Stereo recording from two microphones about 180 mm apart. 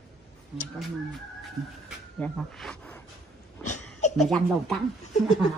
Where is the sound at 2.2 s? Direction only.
5° left (ahead or behind).